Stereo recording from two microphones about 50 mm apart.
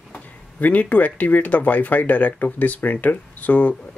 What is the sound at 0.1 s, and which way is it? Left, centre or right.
Speech, left.